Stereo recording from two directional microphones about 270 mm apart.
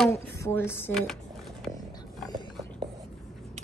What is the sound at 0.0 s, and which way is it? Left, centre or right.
Speech, centre.